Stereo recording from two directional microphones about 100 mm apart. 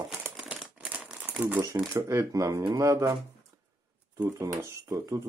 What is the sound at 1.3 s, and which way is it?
Speech, 15° right (ahead or behind).